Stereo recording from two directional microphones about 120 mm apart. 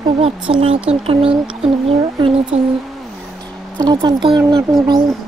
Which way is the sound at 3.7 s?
35° right (ahead or behind).